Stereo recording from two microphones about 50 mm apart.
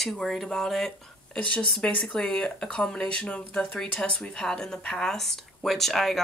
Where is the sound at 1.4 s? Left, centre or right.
Left.